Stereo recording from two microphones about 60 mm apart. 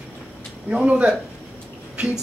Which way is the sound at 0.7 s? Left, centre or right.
Right.